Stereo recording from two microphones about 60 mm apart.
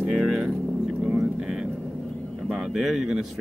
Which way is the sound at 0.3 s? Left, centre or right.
Centre.